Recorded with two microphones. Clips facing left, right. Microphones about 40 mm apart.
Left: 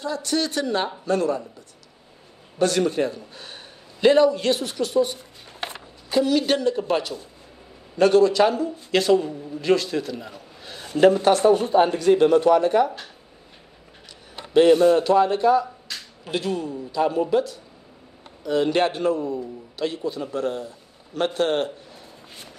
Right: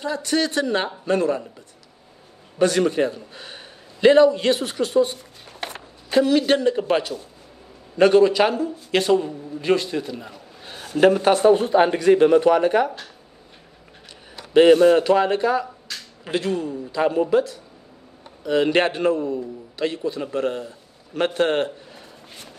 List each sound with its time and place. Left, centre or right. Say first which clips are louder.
0.0 s speech: right 2 dB; right
2.6 s a man's voice: right 2 dB; right
6.0 s a man's voice: right 3 dB; right; by 10.3 s centre
10.6 s a sound: right 2 dB; centre
11.0 s speech: even; centre
11.8 s speech: right 2 dB; right
14.5 s a man's voice: right 2 dB; right